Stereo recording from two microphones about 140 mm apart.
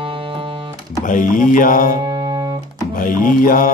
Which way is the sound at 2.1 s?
25° right (ahead or behind).